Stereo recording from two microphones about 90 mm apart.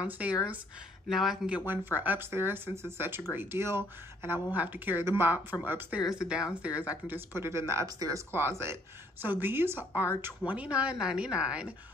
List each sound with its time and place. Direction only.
0.0 s a woman's voice: 15° right (ahead or behind)
1.0 s speech: centre (ahead or behind)
1.7 s speech: 20° right (ahead or behind)
6.0 s a woman's voice: 10° right (ahead or behind)
7.1 s speech: 25° right (ahead or behind)
7.8 s speech: 45° right (ahead or behind)
8.3 s a woman's voice: 25° right (ahead or behind)